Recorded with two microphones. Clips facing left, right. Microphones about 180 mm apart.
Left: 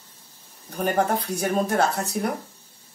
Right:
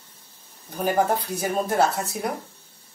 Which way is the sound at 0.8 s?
5° right (ahead or behind).